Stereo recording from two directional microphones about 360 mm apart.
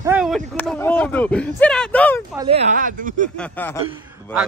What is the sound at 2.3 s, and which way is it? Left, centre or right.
Speech, centre.